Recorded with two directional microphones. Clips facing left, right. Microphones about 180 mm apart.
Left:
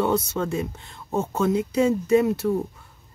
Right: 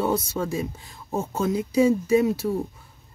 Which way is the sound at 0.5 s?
Centre (ahead or behind).